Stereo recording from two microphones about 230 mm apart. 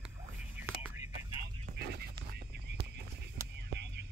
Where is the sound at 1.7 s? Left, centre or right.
Right.